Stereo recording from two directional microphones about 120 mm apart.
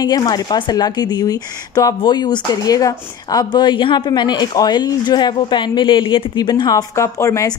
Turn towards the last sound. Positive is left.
turn(degrees=25)  # may be behind; listen again after turning